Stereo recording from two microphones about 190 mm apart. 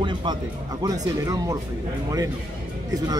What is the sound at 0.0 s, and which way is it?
Music, 25° right (ahead or behind).